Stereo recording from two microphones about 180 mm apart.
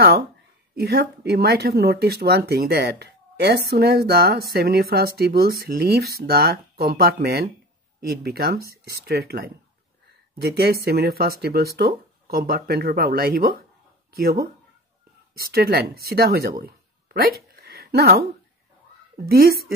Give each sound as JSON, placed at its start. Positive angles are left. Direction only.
{"t": 0.7, "sound": "speech", "side_deg": -60}
{"t": 17.6, "sound": "a sound", "side_deg": -60}
{"t": 19.2, "sound": "speech", "side_deg": -60}